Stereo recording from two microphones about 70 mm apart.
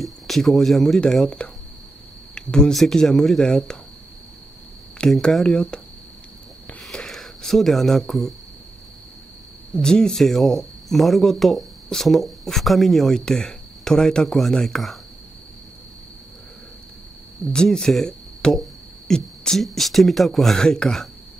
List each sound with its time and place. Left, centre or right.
0.0 s speech: centre
1.2 s speech: centre
5.2 s speech: centre
6.8 s a sound: centre
9.8 s speech: centre
17.5 s speech: centre